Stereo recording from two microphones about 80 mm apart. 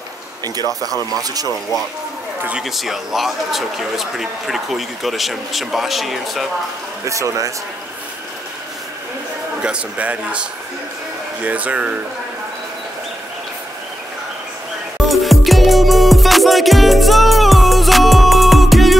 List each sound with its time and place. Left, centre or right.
0.6 s speech: right
2.6 s speech: centre
7.1 s a man's voice: right
9.6 s speech: centre
11.4 s speech: centre
15.0 s music: centre